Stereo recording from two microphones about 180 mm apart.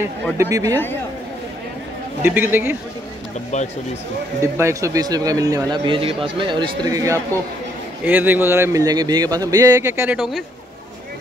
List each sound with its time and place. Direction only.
0.4 s speech: 20° right (ahead or behind)
2.2 s speech: 10° right (ahead or behind)
3.5 s speech: 40° left (ahead or behind)
4.4 s speech: 15° right (ahead or behind)
10.1 s speech: centre (ahead or behind)